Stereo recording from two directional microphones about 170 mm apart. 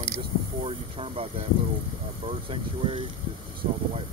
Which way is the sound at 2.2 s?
30° right (ahead or behind).